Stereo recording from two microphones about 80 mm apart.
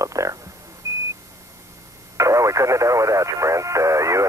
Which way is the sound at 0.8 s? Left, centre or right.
Right.